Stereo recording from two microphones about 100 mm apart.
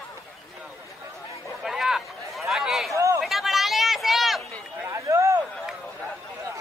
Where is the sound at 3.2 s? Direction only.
Centre (ahead or behind).